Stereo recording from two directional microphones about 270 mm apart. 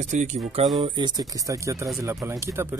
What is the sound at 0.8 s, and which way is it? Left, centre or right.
Speech, centre.